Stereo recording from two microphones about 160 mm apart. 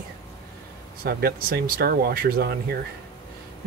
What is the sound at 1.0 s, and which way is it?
Speech, 70° right (ahead or behind).